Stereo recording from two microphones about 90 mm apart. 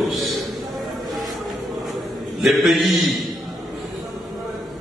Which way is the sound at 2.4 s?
Centre (ahead or behind).